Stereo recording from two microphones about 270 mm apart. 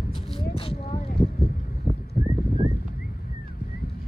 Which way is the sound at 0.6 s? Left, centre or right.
Left.